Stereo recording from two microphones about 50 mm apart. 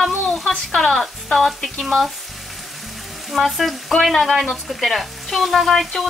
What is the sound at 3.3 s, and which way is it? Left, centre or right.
Speech, centre.